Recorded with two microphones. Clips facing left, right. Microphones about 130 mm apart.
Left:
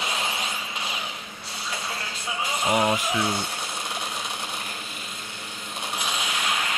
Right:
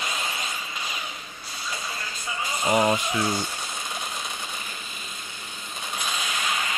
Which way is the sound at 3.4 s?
65° left (ahead or behind).